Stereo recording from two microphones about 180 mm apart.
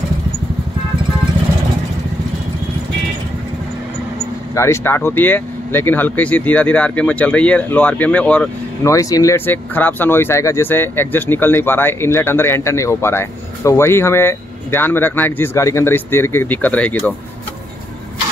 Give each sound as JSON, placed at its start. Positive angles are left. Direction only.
{"t": 4.6, "sound": "speech", "side_deg": 15}
{"t": 8.8, "sound": "speech", "side_deg": 20}